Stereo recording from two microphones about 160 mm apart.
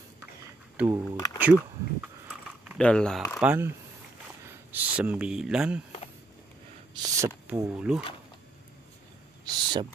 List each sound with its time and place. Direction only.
0.7 s speech: 20° right (ahead or behind)
1.1 s speech: 20° left (ahead or behind)
1.4 s speech: 10° right (ahead or behind)
2.8 s speech: 5° left (ahead or behind)
3.4 s speech: 15° right (ahead or behind)
7.0 s a sound: 15° right (ahead or behind)
9.4 s a sound: 30° right (ahead or behind)